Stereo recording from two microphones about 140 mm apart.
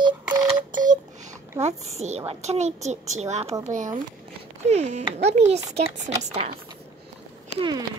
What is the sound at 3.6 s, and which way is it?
Speech, 65° right (ahead or behind).